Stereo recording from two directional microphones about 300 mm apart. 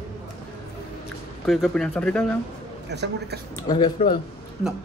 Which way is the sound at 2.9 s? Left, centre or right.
Right.